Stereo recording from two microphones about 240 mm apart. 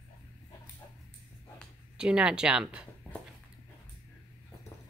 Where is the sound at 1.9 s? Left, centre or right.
Centre.